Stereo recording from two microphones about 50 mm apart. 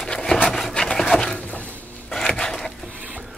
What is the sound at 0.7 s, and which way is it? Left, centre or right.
Wood, centre.